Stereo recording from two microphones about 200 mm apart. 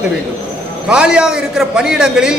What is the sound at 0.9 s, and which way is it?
A man's voice, 5° right (ahead or behind).